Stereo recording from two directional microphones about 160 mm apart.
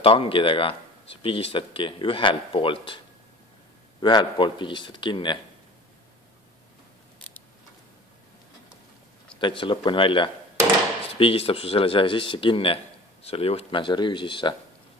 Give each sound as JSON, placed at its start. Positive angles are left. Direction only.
{"t": 0.0, "sound": "speech", "side_deg": 35}
{"t": 4.0, "sound": "speech", "side_deg": 30}
{"t": 9.4, "sound": "speech", "side_deg": 30}